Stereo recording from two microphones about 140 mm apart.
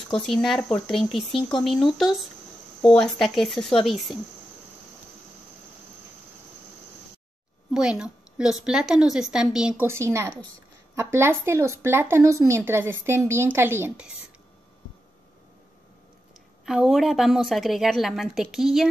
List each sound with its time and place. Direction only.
0.1 s a woman's voice: centre (ahead or behind)
7.7 s a woman's voice: 5° right (ahead or behind)
9.8 s speech: 20° right (ahead or behind)
16.6 s a woman's voice: 5° right (ahead or behind)